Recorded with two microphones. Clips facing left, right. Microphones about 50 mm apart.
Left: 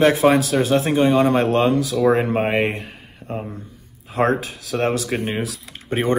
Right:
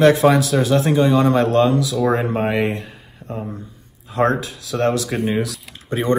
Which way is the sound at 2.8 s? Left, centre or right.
Left.